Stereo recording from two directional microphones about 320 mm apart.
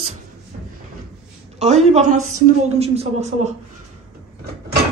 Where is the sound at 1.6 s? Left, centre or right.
Right.